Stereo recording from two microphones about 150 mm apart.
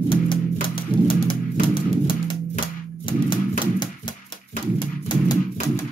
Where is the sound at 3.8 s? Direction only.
30° left (ahead or behind).